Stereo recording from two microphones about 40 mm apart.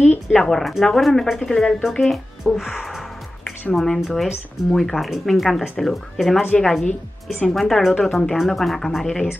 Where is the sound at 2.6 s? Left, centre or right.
Centre.